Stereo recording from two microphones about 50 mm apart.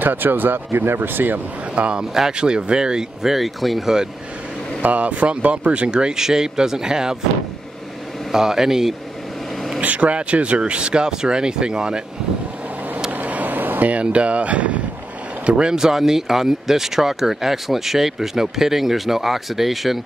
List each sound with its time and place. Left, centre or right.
0.0 s speech: right
1.8 s speech: centre
4.8 s speech: right; by 7.2 s centre
8.3 s speech: centre
9.8 s speech: right
13.1 s vehicle: right
15.4 s speech: centre